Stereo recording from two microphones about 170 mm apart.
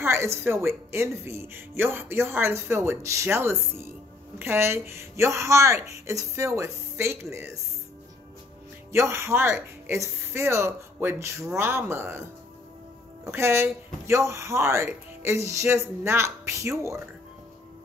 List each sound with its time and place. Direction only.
0.0 s speech: 15° right (ahead or behind)
8.9 s speech: 15° right (ahead or behind)